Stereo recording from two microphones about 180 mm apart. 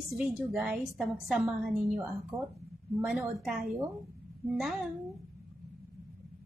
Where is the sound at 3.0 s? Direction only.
5° right (ahead or behind).